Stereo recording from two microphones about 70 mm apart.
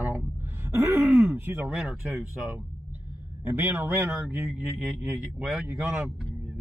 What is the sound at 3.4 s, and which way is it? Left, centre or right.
A man's voice, right.